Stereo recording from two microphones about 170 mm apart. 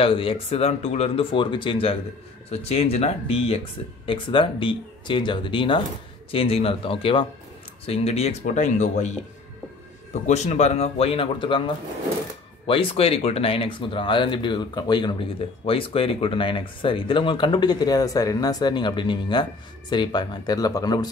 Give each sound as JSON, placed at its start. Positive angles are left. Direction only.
{"t": 0.0, "sound": "speech", "side_deg": 30}
{"t": 10.2, "sound": "speech", "side_deg": 40}